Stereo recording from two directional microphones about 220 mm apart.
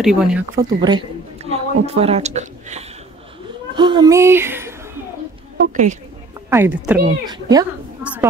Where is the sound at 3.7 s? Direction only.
20° right (ahead or behind).